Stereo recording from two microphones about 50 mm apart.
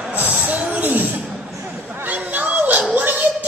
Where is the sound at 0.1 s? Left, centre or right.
Right.